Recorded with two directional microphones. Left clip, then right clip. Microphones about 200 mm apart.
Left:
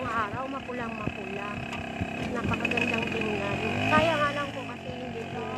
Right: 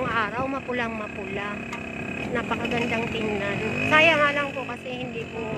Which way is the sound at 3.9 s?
20° right (ahead or behind).